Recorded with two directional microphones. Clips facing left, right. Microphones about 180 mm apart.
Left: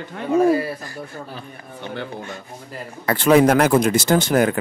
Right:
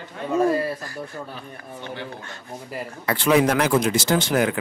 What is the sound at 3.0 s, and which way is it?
Speech, 50° left (ahead or behind).